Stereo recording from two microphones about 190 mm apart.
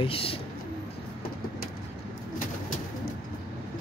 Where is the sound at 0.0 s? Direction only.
30° left (ahead or behind).